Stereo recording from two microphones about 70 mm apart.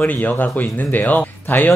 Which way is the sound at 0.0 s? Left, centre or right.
Left.